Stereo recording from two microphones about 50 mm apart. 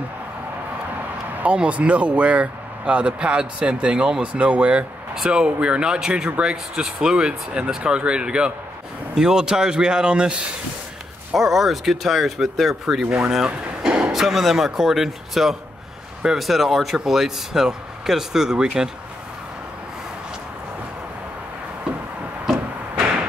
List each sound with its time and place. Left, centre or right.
1.4 s speech: right
11.3 s speech: centre
13.0 s speech: right
13.3 s speech: centre